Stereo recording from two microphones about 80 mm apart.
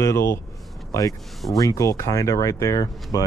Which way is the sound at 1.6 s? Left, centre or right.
Left.